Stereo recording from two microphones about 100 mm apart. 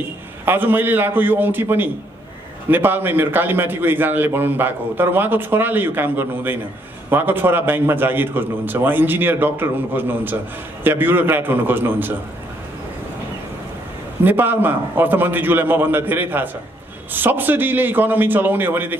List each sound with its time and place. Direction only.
0.5 s a man's voice: 20° right (ahead or behind)
14.2 s a man's voice: 20° right (ahead or behind)